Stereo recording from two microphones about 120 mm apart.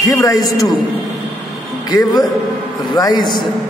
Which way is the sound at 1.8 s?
35° left (ahead or behind).